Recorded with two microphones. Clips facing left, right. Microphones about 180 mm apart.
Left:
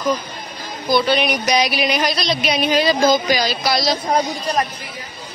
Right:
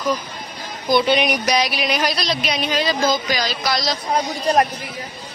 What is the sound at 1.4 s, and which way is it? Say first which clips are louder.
Speech: left 2 dB; centre (ahead or behind).